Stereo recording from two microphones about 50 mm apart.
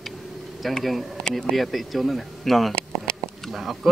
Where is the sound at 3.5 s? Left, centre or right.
Centre.